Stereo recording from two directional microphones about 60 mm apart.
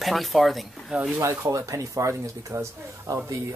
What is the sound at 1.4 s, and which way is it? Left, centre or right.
Speech, right.